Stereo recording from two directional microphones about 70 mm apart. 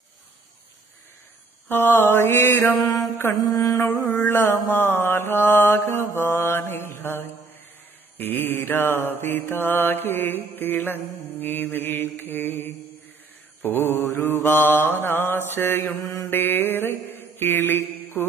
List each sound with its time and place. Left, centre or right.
1.7 s mantra: left
3.5 s mantra: left
3.8 s mantra: left